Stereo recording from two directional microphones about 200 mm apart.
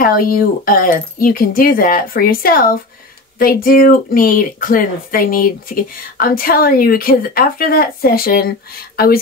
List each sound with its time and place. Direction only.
0.0 s a woman's voice: 45° left (ahead or behind)